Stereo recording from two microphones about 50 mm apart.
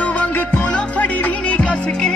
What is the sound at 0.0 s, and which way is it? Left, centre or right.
Music, left.